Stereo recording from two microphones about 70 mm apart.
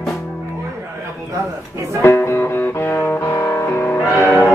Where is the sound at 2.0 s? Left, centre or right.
Left.